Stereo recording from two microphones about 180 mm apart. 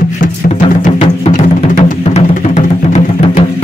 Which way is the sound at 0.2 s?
45° left (ahead or behind).